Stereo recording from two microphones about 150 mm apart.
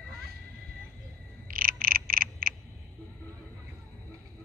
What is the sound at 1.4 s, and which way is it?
Frog, 70° right (ahead or behind).